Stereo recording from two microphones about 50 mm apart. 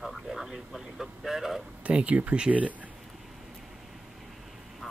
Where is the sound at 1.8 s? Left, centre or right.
Right.